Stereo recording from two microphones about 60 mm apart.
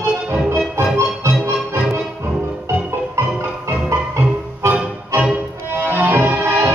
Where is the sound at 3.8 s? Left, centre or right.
Right.